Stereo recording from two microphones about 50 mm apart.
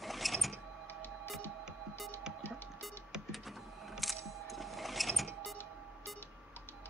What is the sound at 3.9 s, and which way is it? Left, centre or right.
Sewing machine, centre.